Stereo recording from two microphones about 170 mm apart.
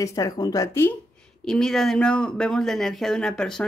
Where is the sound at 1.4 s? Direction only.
5° left (ahead or behind).